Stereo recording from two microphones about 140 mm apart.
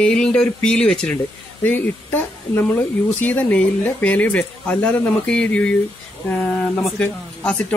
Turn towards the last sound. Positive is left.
turn(degrees=10)  # may be behind; listen again after turning